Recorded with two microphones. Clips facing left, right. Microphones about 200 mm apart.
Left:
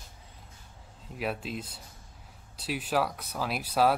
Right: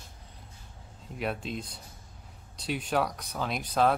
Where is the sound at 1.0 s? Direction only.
Centre (ahead or behind).